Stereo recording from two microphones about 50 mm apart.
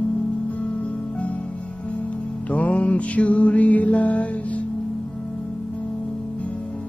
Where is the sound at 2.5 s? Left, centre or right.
Left.